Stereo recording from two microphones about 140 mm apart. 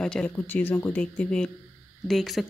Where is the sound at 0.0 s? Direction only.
5° left (ahead or behind).